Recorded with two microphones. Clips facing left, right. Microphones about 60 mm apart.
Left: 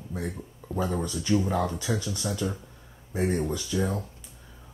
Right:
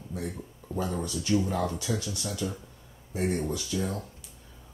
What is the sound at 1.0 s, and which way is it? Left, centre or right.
Speech, left.